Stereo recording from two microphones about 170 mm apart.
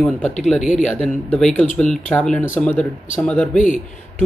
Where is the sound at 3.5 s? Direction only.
50° left (ahead or behind).